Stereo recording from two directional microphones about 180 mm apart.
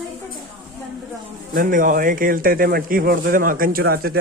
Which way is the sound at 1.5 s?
50° right (ahead or behind).